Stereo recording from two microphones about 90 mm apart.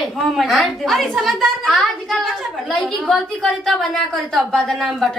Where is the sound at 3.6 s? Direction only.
Centre (ahead or behind).